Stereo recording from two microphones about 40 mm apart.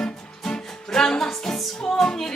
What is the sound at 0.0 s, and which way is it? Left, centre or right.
Music, centre.